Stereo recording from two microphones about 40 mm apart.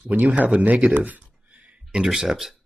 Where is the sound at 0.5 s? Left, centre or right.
Right.